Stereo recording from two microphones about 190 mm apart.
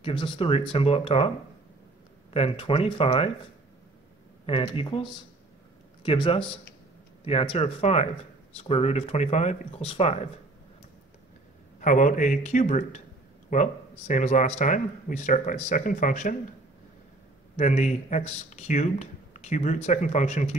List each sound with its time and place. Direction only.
0.0 s speech: 25° left (ahead or behind)
2.3 s speech: 30° left (ahead or behind)
4.5 s speech: 30° left (ahead or behind)
11.8 s speech: 45° left (ahead or behind)
17.6 s speech: 40° left (ahead or behind)